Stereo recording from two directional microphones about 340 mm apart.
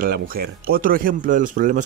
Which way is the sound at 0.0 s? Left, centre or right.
Right.